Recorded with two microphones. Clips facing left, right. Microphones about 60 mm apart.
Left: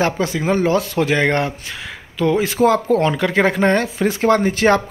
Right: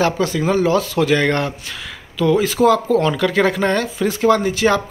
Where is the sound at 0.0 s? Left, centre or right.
Left.